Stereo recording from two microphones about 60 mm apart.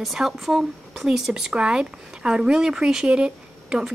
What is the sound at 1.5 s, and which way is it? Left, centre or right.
Speech, centre.